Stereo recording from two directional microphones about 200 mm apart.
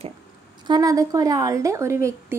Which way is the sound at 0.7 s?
15° right (ahead or behind).